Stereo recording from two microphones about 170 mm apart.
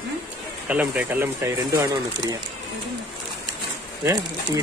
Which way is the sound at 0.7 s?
10° right (ahead or behind).